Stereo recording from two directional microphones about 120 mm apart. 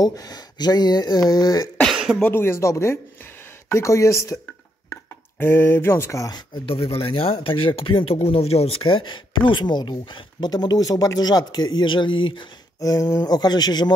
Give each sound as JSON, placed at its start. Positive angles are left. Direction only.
{"t": 0.0, "sound": "speech", "side_deg": 30}
{"t": 1.8, "sound": "cough", "side_deg": 0}
{"t": 2.2, "sound": "speech", "side_deg": 20}
{"t": 5.4, "sound": "speech", "side_deg": 20}
{"t": 6.7, "sound": "speech", "side_deg": 50}